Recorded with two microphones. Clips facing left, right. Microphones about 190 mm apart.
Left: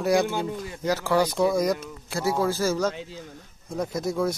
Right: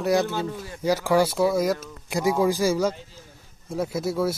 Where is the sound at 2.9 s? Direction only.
75° left (ahead or behind).